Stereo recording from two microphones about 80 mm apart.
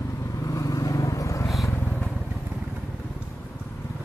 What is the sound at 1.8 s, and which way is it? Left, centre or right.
Vehicle, centre.